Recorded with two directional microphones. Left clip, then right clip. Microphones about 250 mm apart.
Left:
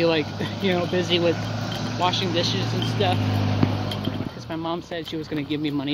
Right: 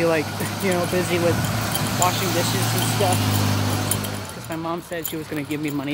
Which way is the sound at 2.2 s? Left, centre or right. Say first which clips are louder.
Right 1 dB; right.